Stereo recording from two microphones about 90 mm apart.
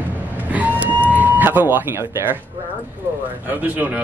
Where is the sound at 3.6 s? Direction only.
20° right (ahead or behind).